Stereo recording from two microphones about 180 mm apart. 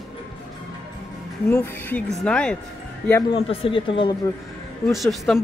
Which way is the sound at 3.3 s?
30° left (ahead or behind).